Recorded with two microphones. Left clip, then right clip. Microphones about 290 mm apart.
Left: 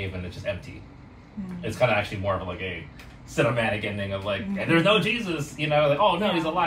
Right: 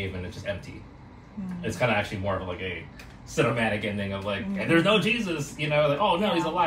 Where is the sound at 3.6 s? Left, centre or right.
Centre.